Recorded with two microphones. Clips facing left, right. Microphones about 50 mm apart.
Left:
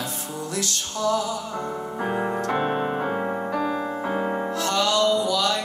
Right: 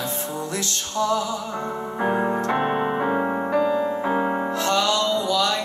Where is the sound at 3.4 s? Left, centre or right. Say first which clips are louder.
Right 4 dB; right.